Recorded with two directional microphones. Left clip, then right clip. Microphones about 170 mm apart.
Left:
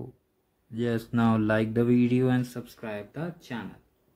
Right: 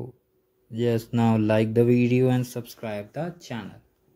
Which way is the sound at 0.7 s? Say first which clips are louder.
Right 4 dB; 5° right (ahead or behind).